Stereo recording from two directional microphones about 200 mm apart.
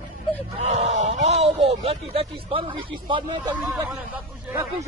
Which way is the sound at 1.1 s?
35° right (ahead or behind).